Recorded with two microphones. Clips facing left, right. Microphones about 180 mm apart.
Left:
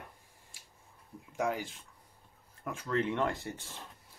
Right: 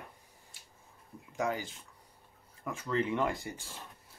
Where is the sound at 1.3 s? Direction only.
Centre (ahead or behind).